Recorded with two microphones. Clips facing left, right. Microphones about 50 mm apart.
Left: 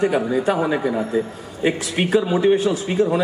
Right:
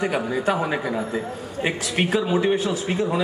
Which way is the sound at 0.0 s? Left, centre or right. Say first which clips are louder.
Left 5 dB; right.